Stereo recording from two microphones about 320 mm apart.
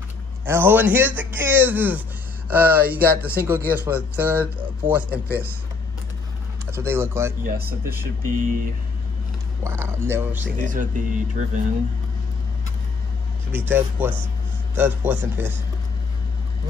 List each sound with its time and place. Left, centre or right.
0.5 s speech: centre
6.7 s speech: centre
7.4 s speech: right
9.6 s speech: centre
10.6 s speech: right
13.7 s speech: centre